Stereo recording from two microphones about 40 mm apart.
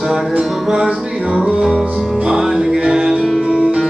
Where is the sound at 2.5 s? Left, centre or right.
Right.